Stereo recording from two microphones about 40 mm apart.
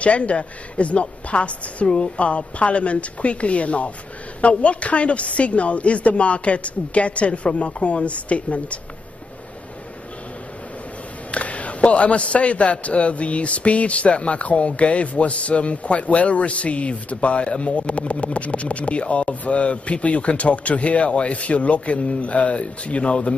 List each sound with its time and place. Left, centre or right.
0.0 s a man's voice: left
11.3 s a man's voice: left